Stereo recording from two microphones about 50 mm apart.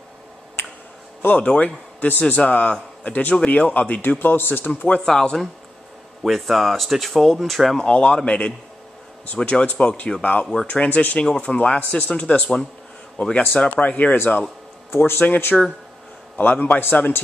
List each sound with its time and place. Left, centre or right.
1.4 s speech: left
2.0 s a man's voice: left
4.0 s a man's voice: left
4.6 s speech: left
5.0 s speech: centre
7.7 s speech: centre
10.4 s speech: centre
10.7 s a man's voice: left
11.2 s a man's voice: centre
14.9 s speech: left
15.5 s speech: centre
16.3 s a man's voice: left